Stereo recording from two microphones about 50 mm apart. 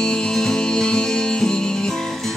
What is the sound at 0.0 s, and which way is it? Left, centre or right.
Music, centre.